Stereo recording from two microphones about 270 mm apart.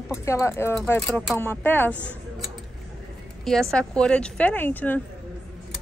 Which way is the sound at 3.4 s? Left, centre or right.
Centre.